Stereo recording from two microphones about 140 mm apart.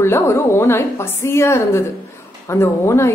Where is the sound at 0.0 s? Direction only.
20° left (ahead or behind).